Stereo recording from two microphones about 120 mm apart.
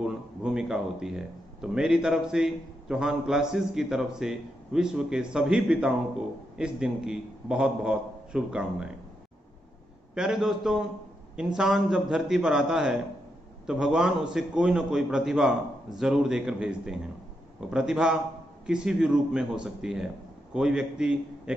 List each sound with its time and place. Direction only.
0.0 s a man's voice: 5° right (ahead or behind)
10.1 s a man's voice: 5° right (ahead or behind)